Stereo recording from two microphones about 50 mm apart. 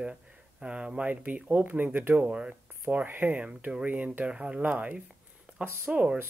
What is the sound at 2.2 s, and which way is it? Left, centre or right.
Speech, right.